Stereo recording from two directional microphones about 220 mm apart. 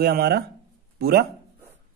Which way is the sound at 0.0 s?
45° right (ahead or behind).